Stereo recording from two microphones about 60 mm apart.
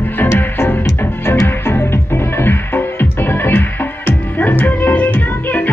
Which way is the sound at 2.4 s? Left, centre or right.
Left.